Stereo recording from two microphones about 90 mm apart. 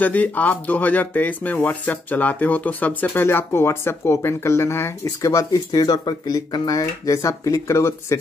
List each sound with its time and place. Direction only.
0.0 s speech: 20° left (ahead or behind)
5.3 s speech: 40° left (ahead or behind)